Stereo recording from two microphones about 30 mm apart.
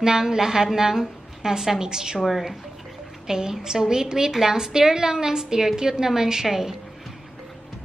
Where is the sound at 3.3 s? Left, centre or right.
Right.